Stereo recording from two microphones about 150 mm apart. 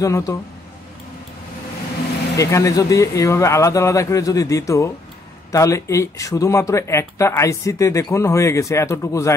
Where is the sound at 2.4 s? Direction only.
20° left (ahead or behind).